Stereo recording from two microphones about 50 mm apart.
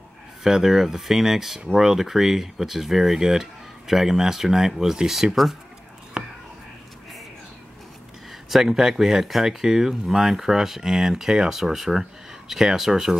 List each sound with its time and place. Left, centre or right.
0.4 s speech: centre
6.2 s whispering: centre
8.5 s speech: centre